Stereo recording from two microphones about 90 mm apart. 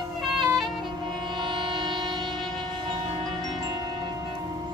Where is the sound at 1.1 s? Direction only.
55° right (ahead or behind).